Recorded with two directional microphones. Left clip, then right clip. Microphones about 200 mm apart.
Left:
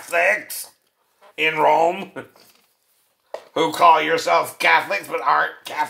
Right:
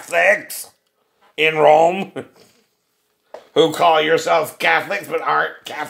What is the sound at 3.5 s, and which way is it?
Speech, 45° right (ahead or behind).